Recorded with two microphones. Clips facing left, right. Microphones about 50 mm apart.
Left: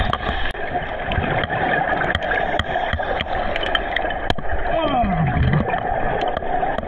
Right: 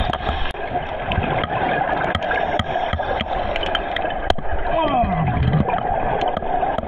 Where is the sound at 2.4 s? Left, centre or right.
Left.